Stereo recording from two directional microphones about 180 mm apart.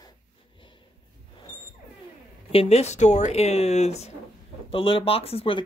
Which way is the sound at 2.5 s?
35° left (ahead or behind).